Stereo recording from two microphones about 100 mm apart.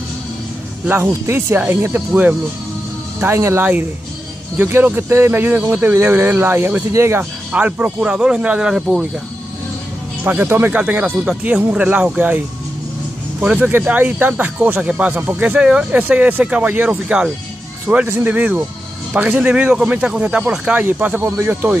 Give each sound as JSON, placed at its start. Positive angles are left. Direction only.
{"t": 0.8, "sound": "speech", "side_deg": -25}
{"t": 7.5, "sound": "speech", "side_deg": -15}
{"t": 10.2, "sound": "speech", "side_deg": -15}
{"t": 17.8, "sound": "speech", "side_deg": -20}